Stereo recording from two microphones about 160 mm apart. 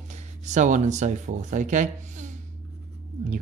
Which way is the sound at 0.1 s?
50° right (ahead or behind).